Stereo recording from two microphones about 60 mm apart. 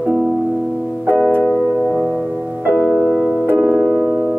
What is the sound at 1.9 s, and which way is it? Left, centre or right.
Music, centre.